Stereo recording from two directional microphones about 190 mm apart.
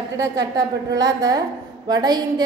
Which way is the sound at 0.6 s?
20° right (ahead or behind).